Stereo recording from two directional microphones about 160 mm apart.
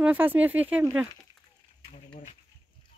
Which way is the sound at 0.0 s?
10° right (ahead or behind).